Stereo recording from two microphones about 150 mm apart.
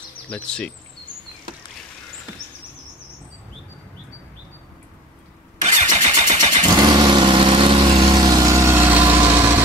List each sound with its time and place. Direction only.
0.3 s speech: 5° left (ahead or behind)
5.6 s vehicle: 50° right (ahead or behind)
6.7 s vehicle: 25° right (ahead or behind)
8.1 s vehicle: 25° right (ahead or behind)